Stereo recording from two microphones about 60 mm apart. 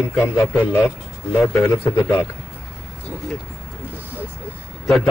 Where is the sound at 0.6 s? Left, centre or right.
Left.